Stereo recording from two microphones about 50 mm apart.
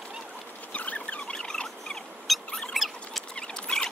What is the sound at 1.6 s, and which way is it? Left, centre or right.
Turkey, centre.